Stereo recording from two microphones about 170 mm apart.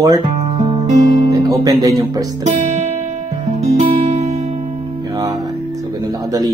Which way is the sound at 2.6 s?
45° right (ahead or behind).